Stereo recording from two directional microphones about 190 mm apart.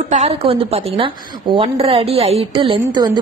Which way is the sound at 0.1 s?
35° right (ahead or behind).